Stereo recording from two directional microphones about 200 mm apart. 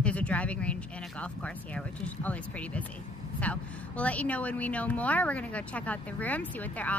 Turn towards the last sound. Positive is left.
turn(degrees=10)  # may be behind; listen again after turning